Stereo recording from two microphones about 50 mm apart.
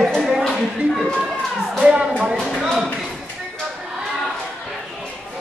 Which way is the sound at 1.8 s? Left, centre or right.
Right.